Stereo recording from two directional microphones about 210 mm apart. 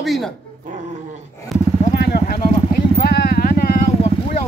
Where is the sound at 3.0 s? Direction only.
50° left (ahead or behind).